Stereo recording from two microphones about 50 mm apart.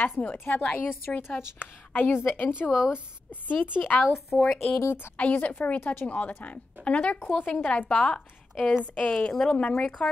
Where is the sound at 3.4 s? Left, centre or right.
Left.